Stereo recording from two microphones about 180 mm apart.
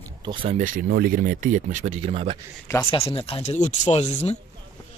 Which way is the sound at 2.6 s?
15° left (ahead or behind).